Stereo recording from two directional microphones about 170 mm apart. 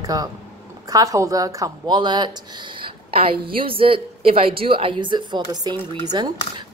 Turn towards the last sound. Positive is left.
turn(degrees=-25)  # may be behind; listen again after turning